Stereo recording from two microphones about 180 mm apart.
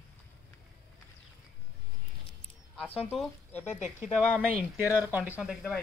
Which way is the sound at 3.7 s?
45° left (ahead or behind).